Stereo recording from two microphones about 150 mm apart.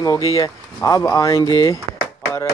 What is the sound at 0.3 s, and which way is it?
Speech, 20° left (ahead or behind).